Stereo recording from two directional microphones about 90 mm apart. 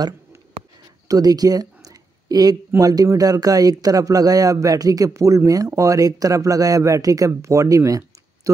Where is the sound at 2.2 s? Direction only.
45° right (ahead or behind).